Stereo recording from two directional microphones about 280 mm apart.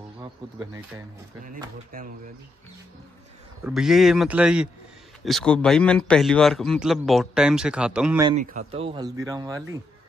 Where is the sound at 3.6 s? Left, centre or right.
Centre.